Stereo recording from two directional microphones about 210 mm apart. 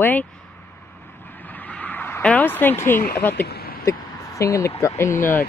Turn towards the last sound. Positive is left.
turn(degrees=10)  # may be behind; listen again after turning